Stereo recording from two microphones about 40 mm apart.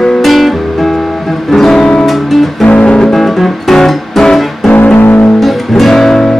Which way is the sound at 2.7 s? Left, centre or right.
Left.